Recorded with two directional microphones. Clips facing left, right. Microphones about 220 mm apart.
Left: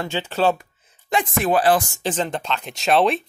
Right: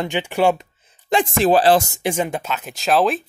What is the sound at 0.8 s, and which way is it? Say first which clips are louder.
A woman's voice: right 4 dB; 30° right (ahead or behind).